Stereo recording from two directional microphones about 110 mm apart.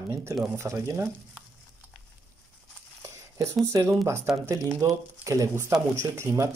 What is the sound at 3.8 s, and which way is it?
Speech, 20° right (ahead or behind).